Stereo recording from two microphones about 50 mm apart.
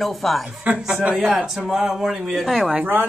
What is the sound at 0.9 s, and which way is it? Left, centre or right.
Speech, centre.